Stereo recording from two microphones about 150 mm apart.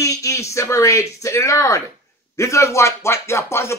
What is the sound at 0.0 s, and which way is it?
A man's voice, 20° left (ahead or behind).